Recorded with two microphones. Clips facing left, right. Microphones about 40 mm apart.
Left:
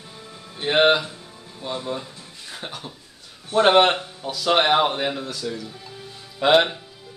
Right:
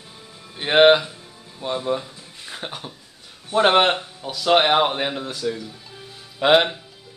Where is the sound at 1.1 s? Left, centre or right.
Centre.